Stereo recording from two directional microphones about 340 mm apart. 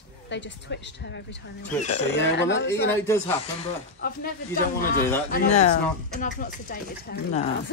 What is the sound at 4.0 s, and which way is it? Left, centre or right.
Speech, left.